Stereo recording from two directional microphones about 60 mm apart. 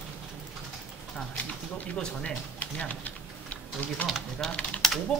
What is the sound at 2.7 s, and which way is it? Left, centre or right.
Typing, left.